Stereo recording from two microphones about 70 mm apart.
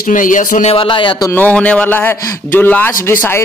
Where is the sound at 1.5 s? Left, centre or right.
Centre; by 3.4 s left.